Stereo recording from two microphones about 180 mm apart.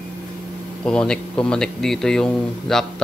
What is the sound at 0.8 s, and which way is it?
A man's voice, 5° left (ahead or behind).